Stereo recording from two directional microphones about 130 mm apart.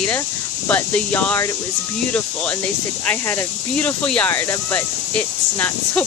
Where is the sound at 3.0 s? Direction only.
15° left (ahead or behind).